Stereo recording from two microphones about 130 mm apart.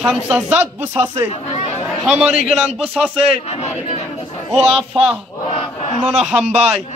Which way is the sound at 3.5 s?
55° left (ahead or behind).